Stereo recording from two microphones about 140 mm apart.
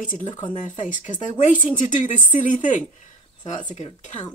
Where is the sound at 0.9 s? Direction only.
65° left (ahead or behind).